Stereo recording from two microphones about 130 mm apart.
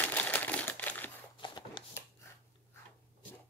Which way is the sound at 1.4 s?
40° left (ahead or behind).